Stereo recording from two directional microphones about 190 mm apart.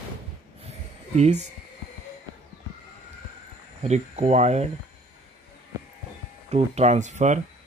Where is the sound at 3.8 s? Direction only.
35° right (ahead or behind).